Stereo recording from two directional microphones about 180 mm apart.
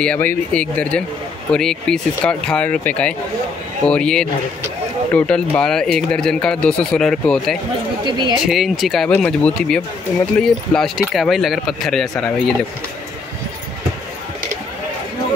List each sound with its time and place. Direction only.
0.0 s speech: 10° left (ahead or behind)
8.0 s speech: 25° right (ahead or behind)
8.5 s speech: centre (ahead or behind)